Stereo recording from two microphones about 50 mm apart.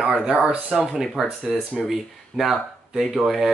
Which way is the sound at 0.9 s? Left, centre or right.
Centre.